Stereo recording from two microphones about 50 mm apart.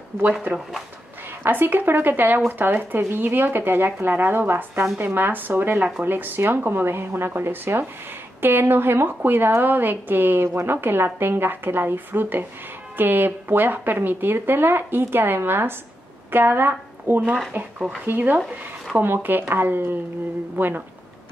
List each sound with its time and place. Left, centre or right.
1.4 s speech: right
17.5 s speech: right